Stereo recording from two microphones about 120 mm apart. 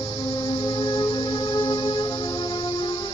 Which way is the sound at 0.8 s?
35° left (ahead or behind).